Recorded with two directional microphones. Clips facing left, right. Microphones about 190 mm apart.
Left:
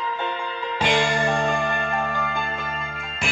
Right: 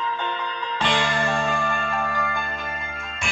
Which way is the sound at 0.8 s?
10° left (ahead or behind).